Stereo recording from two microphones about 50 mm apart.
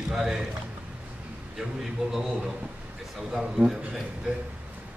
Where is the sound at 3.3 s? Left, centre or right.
Centre.